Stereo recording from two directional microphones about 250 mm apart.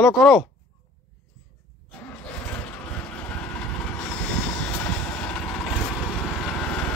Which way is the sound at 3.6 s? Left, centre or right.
Centre.